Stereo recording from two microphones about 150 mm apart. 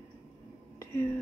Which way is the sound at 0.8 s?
15° left (ahead or behind).